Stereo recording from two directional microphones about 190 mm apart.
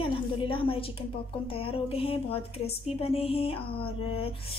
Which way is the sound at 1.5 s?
30° left (ahead or behind).